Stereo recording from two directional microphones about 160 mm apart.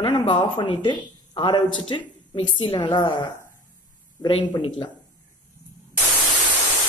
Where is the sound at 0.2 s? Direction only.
30° left (ahead or behind).